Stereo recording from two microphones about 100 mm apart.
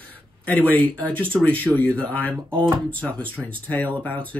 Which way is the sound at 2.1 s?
15° left (ahead or behind).